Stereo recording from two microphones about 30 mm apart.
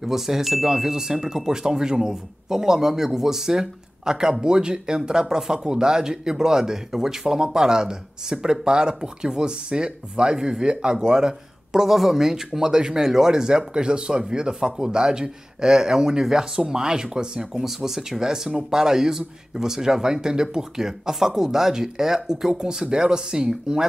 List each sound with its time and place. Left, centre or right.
0.0 s speech: centre
11.9 s speech: centre
17.6 s speech: centre